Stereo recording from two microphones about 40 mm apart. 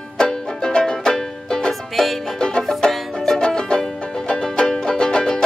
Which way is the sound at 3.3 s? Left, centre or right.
Left.